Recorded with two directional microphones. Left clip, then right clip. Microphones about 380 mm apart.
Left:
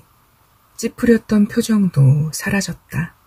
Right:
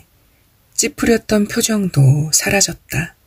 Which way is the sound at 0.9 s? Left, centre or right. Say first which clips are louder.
Even; centre.